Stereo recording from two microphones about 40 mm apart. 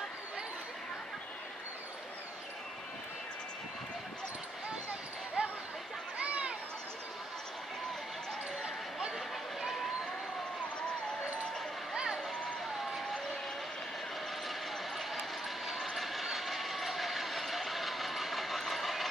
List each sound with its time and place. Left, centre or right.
5.4 s a sound: right
11.9 s vehicle: centre
15.0 s vehicle: centre